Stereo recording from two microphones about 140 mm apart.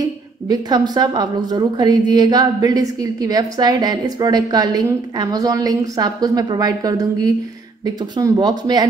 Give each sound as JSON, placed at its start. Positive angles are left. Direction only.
{"t": 0.5, "sound": "a woman's voice", "side_deg": -30}